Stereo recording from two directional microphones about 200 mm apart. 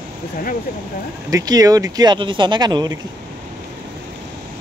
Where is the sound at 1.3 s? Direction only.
20° right (ahead or behind).